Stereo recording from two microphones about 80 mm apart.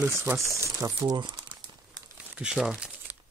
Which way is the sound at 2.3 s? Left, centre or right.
Centre.